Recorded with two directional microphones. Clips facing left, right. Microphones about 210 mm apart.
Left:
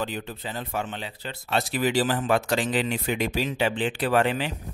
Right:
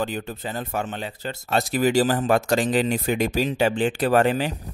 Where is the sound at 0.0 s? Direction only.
45° right (ahead or behind).